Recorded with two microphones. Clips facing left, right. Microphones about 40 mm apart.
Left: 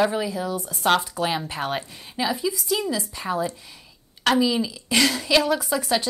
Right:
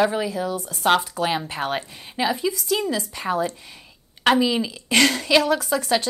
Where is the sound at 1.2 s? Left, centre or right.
Right.